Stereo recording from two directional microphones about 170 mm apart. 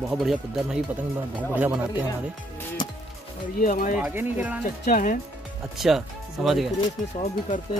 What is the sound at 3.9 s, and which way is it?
Speech, 10° right (ahead or behind).